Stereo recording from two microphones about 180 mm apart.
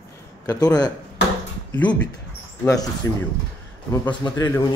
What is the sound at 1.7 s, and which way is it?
Speech, 5° left (ahead or behind).